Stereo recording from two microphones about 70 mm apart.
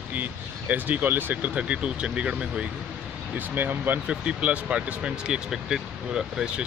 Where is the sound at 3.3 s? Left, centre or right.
Right.